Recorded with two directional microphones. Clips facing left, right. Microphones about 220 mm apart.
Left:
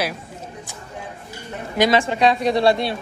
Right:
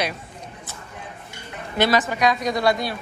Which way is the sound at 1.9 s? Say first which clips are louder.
Left 3 dB; 30° left (ahead or behind).